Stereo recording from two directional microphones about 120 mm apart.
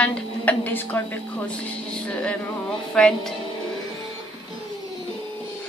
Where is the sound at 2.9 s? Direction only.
5° left (ahead or behind).